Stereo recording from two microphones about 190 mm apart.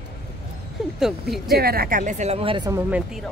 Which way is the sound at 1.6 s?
55° right (ahead or behind).